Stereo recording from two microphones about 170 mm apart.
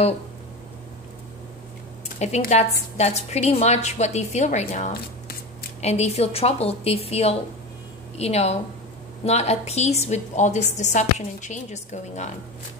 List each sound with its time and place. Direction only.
2.1 s a woman's voice: 40° left (ahead or behind)